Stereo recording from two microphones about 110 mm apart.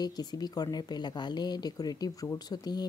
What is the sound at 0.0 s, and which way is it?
Speech, 40° left (ahead or behind).